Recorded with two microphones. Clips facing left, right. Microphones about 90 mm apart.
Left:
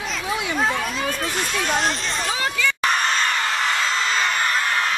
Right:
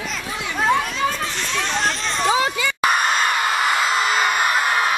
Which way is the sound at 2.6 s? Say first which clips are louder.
Right 2 dB; 10° right (ahead or behind).